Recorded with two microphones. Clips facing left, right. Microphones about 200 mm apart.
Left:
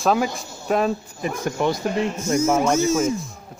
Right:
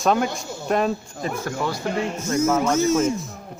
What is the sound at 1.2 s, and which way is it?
Speech, 20° left (ahead or behind).